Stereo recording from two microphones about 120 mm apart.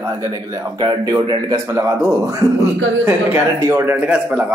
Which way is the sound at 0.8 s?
40° right (ahead or behind).